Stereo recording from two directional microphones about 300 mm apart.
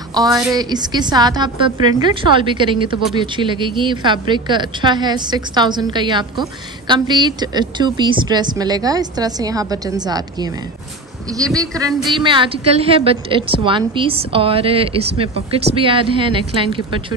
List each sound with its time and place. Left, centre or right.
0.1 s a woman's voice: centre